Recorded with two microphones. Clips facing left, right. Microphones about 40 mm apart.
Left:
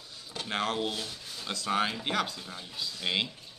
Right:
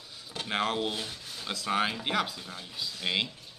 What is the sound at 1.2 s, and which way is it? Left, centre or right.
Speech, centre.